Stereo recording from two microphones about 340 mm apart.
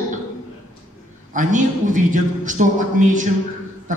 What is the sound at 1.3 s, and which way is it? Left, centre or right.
A man's voice, right.